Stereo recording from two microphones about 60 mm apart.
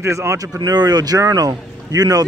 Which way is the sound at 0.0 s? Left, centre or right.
Right.